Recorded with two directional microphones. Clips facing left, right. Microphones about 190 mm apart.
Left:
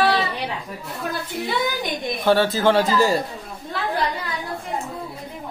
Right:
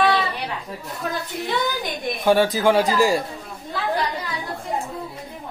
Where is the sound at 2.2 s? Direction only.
15° right (ahead or behind).